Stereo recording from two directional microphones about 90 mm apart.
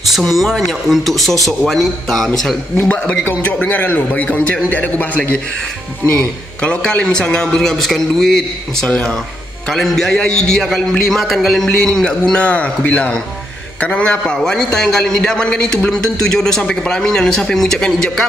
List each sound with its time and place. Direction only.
0.2 s speech: centre (ahead or behind)
2.8 s a man's voice: 15° left (ahead or behind)